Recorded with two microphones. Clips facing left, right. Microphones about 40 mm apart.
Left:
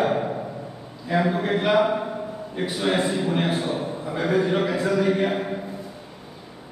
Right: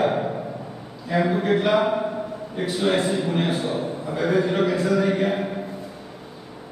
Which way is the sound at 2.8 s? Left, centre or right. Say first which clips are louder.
Right 1 dB; centre.